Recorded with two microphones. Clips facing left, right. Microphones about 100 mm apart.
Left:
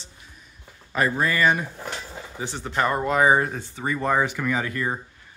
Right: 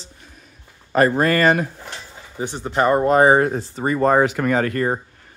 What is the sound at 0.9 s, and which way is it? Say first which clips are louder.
Speech: right 7 dB; 55° right (ahead or behind).